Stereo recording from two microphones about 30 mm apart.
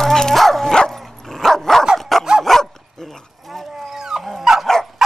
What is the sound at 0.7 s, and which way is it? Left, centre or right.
Dog, left.